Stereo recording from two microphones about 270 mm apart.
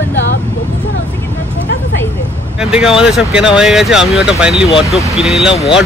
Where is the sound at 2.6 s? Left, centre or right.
Centre.